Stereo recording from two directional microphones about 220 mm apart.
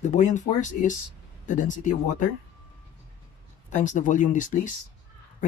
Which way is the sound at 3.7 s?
35° left (ahead or behind).